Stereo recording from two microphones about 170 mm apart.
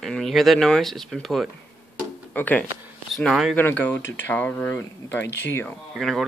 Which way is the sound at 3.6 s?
10° left (ahead or behind).